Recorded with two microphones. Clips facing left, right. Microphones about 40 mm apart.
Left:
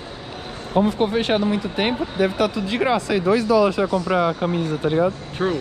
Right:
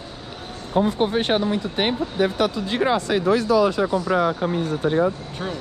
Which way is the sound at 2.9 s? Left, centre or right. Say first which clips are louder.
Left 1 dB; left.